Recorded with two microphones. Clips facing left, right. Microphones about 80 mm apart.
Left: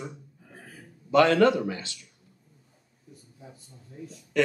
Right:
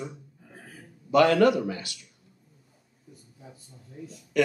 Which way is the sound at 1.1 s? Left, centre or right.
Left.